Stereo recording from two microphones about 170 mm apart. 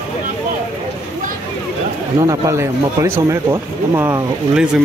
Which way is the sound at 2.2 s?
20° right (ahead or behind).